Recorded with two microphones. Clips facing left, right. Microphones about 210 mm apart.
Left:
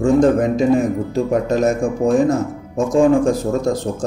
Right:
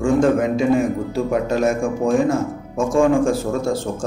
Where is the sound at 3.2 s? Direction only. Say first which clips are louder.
Left 2 dB; 35° left (ahead or behind).